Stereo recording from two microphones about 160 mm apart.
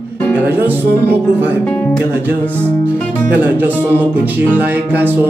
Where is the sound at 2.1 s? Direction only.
10° right (ahead or behind).